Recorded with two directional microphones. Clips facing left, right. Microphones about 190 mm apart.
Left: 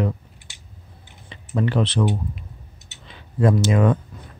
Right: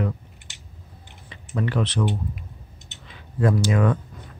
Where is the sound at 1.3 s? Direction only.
25° left (ahead or behind).